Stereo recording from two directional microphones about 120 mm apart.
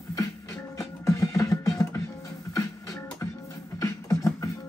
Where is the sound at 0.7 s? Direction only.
25° left (ahead or behind).